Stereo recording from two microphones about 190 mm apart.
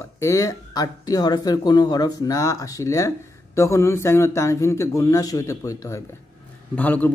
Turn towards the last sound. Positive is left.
turn(degrees=10)  # may be behind; listen again after turning